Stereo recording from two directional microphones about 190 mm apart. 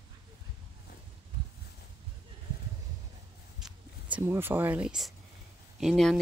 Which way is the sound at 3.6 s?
10° right (ahead or behind).